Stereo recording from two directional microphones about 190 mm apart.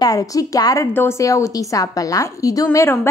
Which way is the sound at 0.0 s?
20° left (ahead or behind).